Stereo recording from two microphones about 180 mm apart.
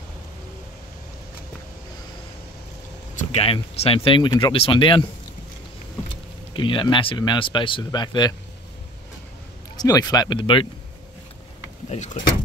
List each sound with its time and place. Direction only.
3.2 s speech: 30° left (ahead or behind)
6.5 s speech: 25° left (ahead or behind)
9.8 s speech: 20° left (ahead or behind)
11.9 s speech: 40° left (ahead or behind)